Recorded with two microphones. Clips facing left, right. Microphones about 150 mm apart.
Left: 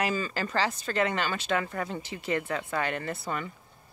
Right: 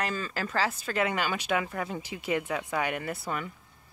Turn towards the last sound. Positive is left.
turn(degrees=-5)  # may be behind; listen again after turning